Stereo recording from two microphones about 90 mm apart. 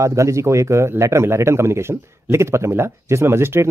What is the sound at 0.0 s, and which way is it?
A man's voice, 35° right (ahead or behind).